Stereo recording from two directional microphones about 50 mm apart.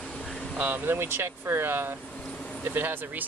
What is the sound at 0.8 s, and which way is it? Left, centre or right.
Speech, right.